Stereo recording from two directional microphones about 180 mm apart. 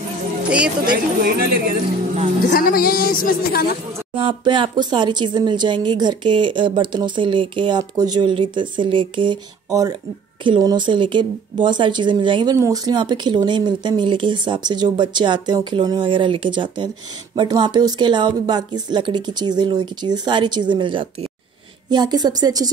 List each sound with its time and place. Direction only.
0.4 s music: 5° right (ahead or behind)
1.2 s speech: 60° right (ahead or behind)
2.5 s speech: 55° left (ahead or behind)
4.1 s speech: 30° right (ahead or behind)